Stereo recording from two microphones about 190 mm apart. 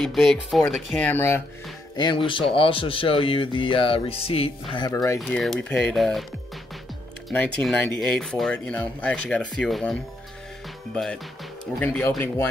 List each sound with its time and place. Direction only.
0.0 s speech: centre (ahead or behind)
2.0 s speech: 25° left (ahead or behind)
4.7 s speech: 20° left (ahead or behind)
5.2 s speech: 5° left (ahead or behind)
7.2 s speech: 5° left (ahead or behind)
11.8 s speech: 10° left (ahead or behind)